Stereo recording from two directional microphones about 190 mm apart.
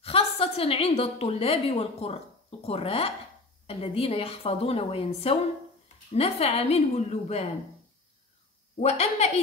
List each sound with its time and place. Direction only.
0.0 s a woman's voice: 30° left (ahead or behind)
8.8 s a woman's voice: 35° left (ahead or behind)